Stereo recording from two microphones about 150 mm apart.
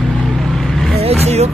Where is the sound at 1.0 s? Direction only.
45° right (ahead or behind).